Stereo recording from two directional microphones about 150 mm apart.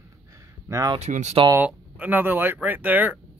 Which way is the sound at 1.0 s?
50° right (ahead or behind).